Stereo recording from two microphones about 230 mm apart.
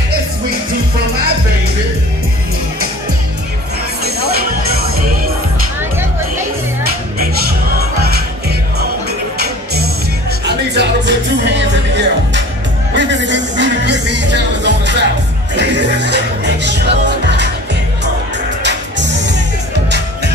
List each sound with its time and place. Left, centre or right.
8.0 s music: right
10.4 s music: right
18.6 s music: right